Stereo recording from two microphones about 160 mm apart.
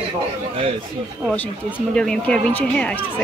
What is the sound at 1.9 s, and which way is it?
Speech, 5° left (ahead or behind).